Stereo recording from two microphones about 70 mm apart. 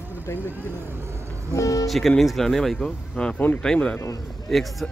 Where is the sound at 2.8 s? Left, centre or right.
Centre.